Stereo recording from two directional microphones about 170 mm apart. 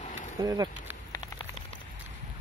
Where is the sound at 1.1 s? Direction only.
30° left (ahead or behind).